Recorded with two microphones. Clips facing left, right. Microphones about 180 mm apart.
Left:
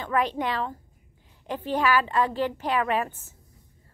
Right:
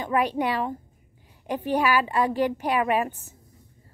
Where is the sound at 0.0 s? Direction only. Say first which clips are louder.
Right 2 dB; 10° right (ahead or behind).